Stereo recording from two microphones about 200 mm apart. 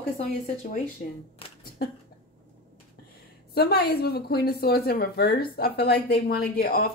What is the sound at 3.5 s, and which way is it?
Speech, 50° left (ahead or behind).